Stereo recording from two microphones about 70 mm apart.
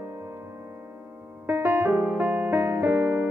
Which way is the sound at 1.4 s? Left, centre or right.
Right.